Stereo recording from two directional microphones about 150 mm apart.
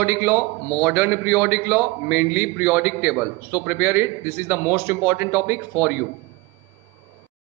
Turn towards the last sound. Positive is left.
turn(degrees=-15)  # may be behind; listen again after turning